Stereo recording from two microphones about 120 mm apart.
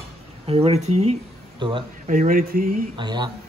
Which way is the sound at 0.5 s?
55° right (ahead or behind).